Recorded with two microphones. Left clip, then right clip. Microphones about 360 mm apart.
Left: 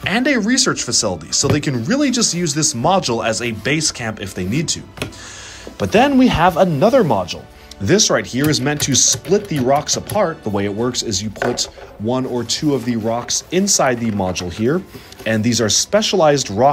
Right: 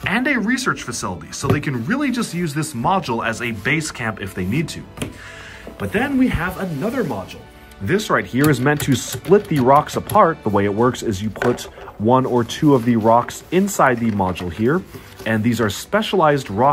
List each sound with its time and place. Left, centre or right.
0.0 s speech: centre
5.8 s speech: centre
12.3 s speech: right
12.7 s speech: centre